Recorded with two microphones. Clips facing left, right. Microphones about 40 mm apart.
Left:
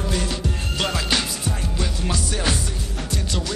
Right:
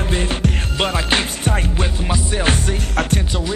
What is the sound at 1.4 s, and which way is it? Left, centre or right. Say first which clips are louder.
Music: right 6 dB; right.